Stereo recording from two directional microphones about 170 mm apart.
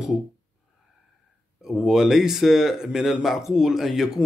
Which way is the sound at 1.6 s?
Centre (ahead or behind).